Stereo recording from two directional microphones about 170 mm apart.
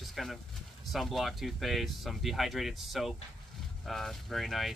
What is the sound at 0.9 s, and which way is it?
Speech, centre (ahead or behind).